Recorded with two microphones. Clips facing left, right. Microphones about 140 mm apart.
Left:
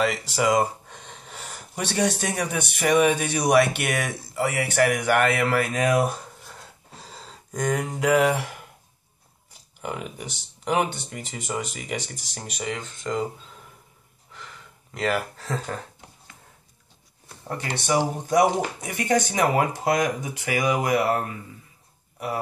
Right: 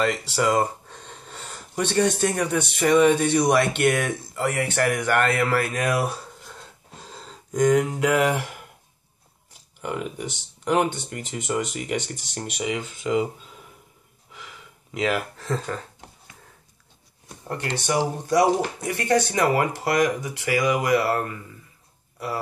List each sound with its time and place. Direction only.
0.0 s speech: 5° left (ahead or behind)
5.8 s speech: 20° left (ahead or behind)
7.0 s speech: centre (ahead or behind)
9.8 s speech: centre (ahead or behind)
14.3 s gasp: 5° right (ahead or behind)
17.5 s speech: 15° left (ahead or behind)